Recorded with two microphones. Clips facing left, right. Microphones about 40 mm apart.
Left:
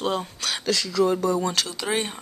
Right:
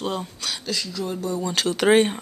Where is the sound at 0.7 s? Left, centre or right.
Left.